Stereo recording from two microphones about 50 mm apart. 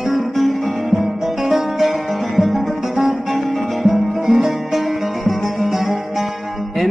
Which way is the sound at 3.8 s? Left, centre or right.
Centre.